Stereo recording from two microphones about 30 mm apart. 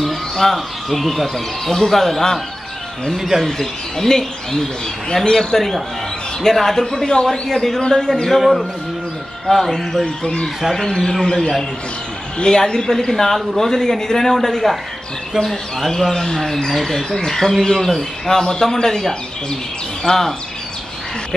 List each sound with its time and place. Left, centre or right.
0.0 s speech: centre
3.2 s speech: centre
3.4 s speech: centre
5.2 s a man's voice: left
6.6 s speech: centre
8.3 s speech: centre
10.0 s a man's voice: left
12.4 s a man's voice: left
12.9 s speech: centre
16.1 s speech: centre
18.3 s speech: centre